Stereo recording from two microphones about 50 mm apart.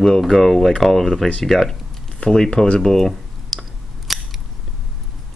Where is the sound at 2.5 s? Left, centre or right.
Left.